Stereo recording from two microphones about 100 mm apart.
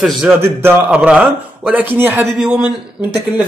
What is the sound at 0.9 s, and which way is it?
Speech, 10° right (ahead or behind).